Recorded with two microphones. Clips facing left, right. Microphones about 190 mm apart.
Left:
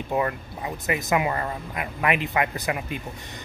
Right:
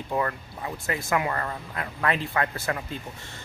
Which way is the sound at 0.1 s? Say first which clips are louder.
Left 2 dB; 20° left (ahead or behind).